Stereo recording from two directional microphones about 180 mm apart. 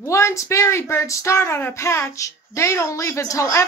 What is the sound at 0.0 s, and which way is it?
Speech, 15° left (ahead or behind).